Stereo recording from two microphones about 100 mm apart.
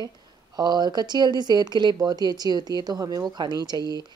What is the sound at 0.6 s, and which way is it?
A woman's voice, 45° right (ahead or behind).